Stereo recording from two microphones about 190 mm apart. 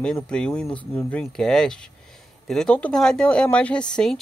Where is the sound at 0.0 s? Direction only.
5° left (ahead or behind).